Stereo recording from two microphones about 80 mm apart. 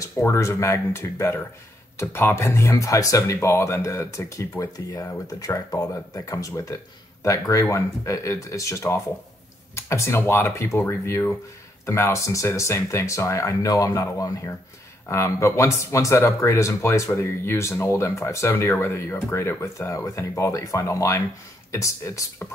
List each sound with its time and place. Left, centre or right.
0.0 s speech: left